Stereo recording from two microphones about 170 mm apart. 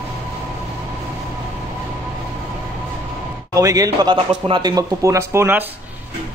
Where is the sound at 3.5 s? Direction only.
20° right (ahead or behind).